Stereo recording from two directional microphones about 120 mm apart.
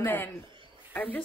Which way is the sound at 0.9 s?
15° left (ahead or behind).